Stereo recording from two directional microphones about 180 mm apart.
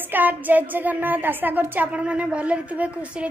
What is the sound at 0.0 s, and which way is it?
A woman's voice, 10° right (ahead or behind).